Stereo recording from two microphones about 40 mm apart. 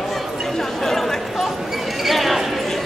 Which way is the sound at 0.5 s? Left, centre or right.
Centre.